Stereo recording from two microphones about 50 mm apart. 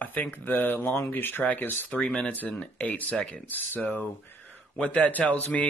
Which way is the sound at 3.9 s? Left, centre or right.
Left.